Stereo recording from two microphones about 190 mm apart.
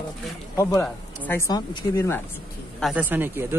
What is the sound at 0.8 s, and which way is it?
Speech, 10° left (ahead or behind).